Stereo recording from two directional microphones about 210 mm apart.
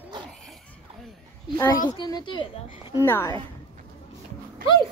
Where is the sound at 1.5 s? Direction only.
15° left (ahead or behind).